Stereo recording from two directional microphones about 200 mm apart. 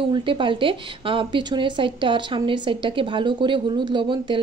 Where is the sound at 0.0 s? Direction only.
25° right (ahead or behind).